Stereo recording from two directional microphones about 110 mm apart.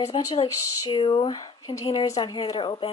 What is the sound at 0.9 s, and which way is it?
Speech, 45° left (ahead or behind).